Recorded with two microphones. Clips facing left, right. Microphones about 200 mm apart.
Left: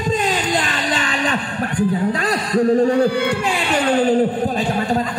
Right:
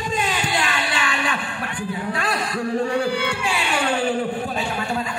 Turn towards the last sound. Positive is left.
turn(degrees=40)  # may be behind; listen again after turning